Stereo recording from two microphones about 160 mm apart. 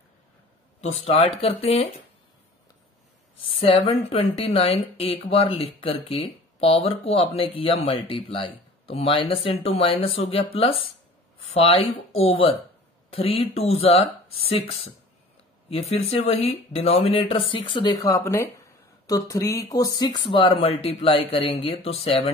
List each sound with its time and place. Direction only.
0.7 s speech: 40° left (ahead or behind)
3.5 s speech: 35° left (ahead or behind)
13.1 s speech: 35° left (ahead or behind)
20.2 s speech: 35° left (ahead or behind)